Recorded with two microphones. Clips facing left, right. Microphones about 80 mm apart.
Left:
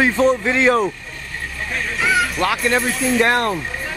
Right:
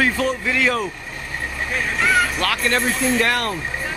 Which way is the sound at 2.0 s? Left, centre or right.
Centre.